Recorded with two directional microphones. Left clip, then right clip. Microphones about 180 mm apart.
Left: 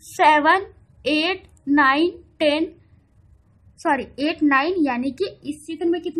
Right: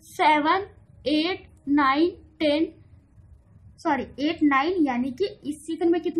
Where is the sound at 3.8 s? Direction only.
20° left (ahead or behind).